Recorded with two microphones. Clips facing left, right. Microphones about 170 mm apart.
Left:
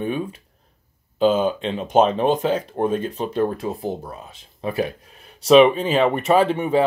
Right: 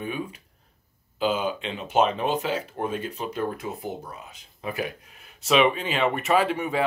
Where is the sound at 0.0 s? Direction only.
40° left (ahead or behind).